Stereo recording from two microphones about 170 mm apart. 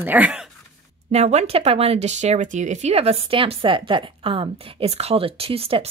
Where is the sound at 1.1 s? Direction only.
40° right (ahead or behind).